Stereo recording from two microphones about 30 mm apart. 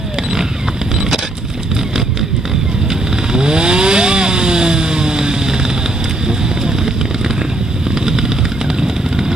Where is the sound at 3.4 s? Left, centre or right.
Right.